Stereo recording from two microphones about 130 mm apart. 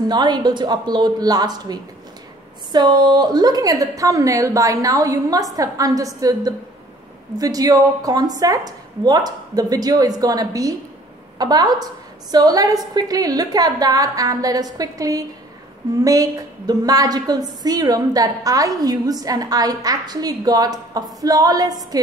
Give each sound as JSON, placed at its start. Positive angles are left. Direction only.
{"t": 0.0, "sound": "a woman's voice", "side_deg": -35}